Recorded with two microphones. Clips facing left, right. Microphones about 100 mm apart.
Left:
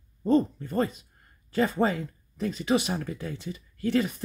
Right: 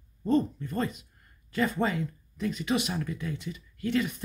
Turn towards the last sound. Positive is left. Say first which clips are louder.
# left 3 dB
turn(degrees=35)  # may be behind; listen again after turning